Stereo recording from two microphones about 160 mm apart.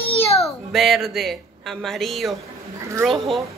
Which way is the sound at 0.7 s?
Centre (ahead or behind).